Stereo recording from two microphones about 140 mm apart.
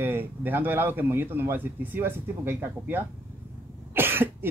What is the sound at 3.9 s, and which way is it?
Cough, 15° right (ahead or behind).